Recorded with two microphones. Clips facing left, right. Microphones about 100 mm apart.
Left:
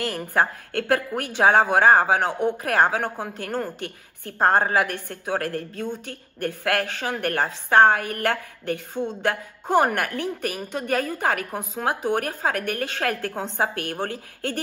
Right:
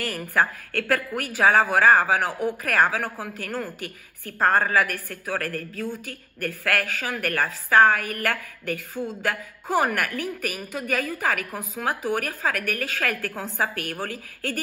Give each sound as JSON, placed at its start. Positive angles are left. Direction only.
{"t": 0.0, "sound": "a woman's voice", "side_deg": 30}